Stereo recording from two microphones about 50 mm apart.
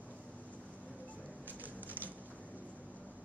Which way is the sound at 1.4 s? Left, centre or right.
Right.